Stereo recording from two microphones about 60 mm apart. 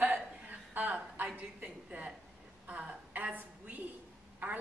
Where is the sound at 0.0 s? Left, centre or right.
Right.